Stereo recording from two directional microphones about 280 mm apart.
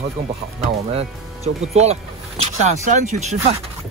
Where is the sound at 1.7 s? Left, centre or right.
Right.